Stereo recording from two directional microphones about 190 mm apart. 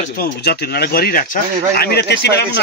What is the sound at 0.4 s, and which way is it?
Speech, 55° left (ahead or behind).